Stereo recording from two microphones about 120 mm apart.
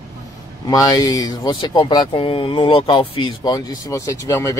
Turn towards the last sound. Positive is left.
turn(degrees=30)  # may be behind; listen again after turning